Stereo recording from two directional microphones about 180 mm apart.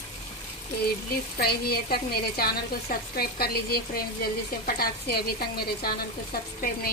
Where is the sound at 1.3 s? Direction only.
60° left (ahead or behind).